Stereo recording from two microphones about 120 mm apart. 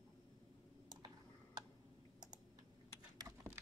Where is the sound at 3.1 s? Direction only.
25° right (ahead or behind).